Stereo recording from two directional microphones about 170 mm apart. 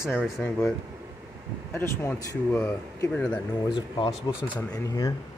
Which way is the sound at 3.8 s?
30° left (ahead or behind).